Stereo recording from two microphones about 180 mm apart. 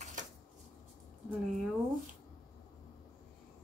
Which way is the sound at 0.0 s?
45° right (ahead or behind).